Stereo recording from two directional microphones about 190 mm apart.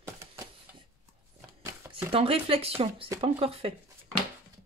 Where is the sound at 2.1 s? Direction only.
30° right (ahead or behind).